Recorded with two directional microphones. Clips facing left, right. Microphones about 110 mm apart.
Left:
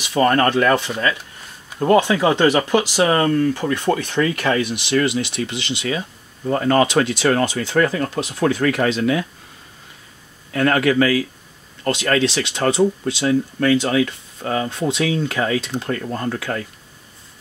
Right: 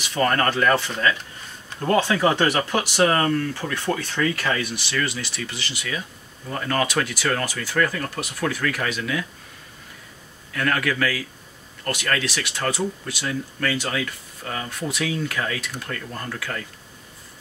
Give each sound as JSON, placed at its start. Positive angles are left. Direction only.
{"t": 0.0, "sound": "speech", "side_deg": 20}
{"t": 2.0, "sound": "speech", "side_deg": 15}
{"t": 10.5, "sound": "speech", "side_deg": 25}